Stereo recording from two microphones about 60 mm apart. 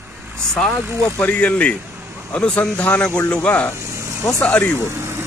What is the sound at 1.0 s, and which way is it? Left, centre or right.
Speech, left.